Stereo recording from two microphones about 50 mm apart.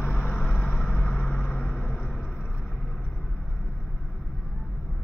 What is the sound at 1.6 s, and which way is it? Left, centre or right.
Vehicle, left.